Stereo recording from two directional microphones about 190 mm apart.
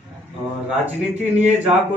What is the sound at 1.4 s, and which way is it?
Speech, 35° right (ahead or behind).